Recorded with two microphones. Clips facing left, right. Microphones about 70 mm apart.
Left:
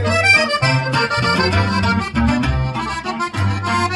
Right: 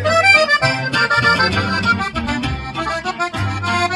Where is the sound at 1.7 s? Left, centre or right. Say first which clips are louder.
Even; centre.